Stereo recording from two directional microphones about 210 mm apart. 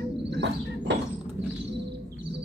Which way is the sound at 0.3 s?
55° right (ahead or behind).